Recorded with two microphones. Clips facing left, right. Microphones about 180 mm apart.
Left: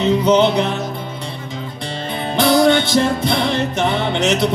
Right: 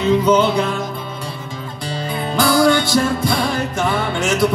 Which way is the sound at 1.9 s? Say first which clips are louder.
Right 1 dB; 25° left (ahead or behind).